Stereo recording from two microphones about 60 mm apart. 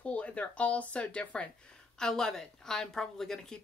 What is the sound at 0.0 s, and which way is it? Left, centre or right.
Speech, left.